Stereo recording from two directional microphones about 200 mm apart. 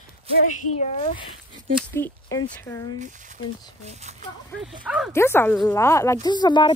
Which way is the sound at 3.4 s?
25° left (ahead or behind).